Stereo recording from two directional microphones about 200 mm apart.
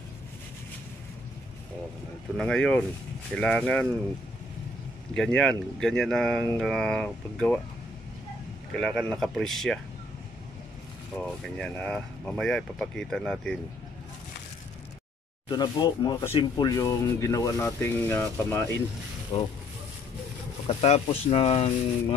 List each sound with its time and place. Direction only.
2.3 s speech: 5° left (ahead or behind)
5.1 s speech: 5° left (ahead or behind)
8.7 s speech: 5° left (ahead or behind)
11.1 s speech: 5° left (ahead or behind)
15.4 s speech: 20° left (ahead or behind)
19.3 s speech: 25° left (ahead or behind)
20.6 s speech: 30° left (ahead or behind)